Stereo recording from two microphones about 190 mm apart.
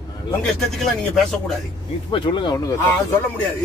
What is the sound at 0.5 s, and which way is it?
Speech, centre (ahead or behind).